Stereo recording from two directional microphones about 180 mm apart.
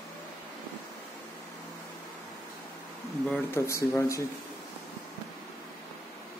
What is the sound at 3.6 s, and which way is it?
Speech, 15° left (ahead or behind).